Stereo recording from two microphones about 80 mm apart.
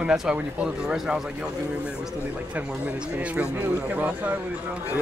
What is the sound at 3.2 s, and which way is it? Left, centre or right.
A man's voice, centre.